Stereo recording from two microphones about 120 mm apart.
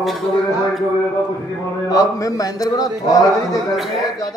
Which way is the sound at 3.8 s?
Centre (ahead or behind).